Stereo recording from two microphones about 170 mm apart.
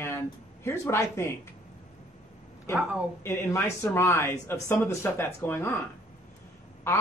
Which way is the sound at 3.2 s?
15° left (ahead or behind).